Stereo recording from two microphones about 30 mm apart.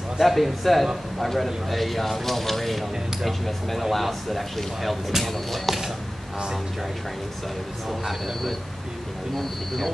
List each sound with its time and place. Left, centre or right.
0.2 s speech: centre
7.9 s speech: centre
9.3 s speech: centre